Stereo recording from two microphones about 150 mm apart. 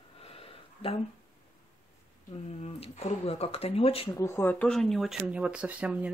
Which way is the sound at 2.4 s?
45° left (ahead or behind).